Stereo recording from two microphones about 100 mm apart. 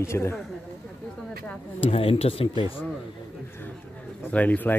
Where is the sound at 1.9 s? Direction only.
80° left; by 2.8 s 60° left (ahead or behind).